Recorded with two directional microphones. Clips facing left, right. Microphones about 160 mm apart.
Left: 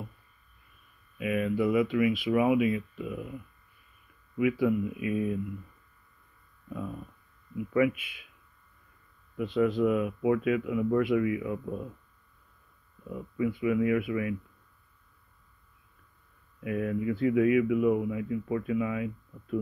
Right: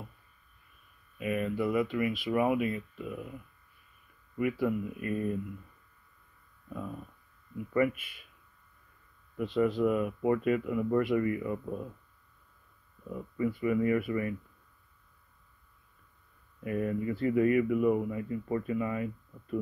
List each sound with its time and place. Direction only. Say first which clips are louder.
1.1 s speech: left 3 dB; 10° left (ahead or behind)
4.4 s speech: left 4 dB; 5° left (ahead or behind)
6.7 s speech: left 2 dB; 5° left (ahead or behind)
9.4 s speech: left 2 dB; centre (ahead or behind)
13.0 s speech: left 2 dB; 5° left (ahead or behind)
16.6 s speech: left 2 dB; centre (ahead or behind)